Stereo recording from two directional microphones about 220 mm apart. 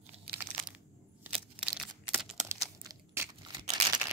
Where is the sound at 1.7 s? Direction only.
Centre (ahead or behind).